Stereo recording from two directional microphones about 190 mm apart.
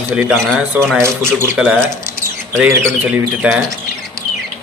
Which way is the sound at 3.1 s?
5° right (ahead or behind).